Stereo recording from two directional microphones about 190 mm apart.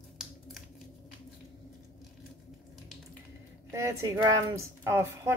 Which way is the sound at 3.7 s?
15° right (ahead or behind).